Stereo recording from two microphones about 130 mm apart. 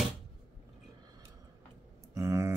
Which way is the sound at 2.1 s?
20° right (ahead or behind).